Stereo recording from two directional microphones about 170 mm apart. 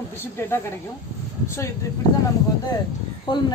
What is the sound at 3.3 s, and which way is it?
Speech, 25° left (ahead or behind).